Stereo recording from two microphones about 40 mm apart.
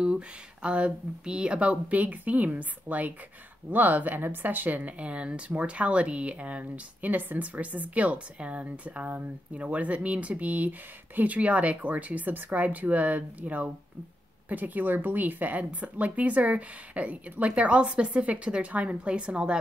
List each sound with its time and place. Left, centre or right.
0.0 s a woman's voice: right